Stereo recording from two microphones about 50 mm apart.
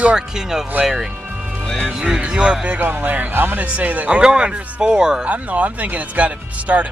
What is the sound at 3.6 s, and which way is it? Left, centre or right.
Speech, right.